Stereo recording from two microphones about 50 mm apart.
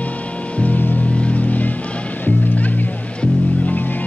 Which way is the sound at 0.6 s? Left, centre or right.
Left.